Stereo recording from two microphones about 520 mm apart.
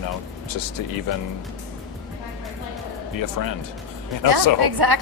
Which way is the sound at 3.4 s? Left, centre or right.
Left.